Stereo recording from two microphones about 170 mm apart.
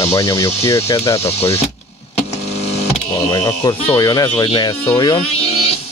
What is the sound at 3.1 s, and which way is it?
Speech, 20° left (ahead or behind).